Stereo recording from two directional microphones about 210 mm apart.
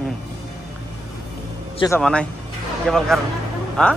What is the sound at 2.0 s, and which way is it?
Speech, 5° left (ahead or behind).